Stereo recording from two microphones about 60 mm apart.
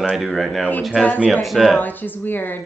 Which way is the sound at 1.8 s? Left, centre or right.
Left.